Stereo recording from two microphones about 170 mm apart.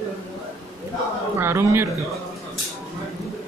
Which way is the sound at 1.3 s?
15° right (ahead or behind).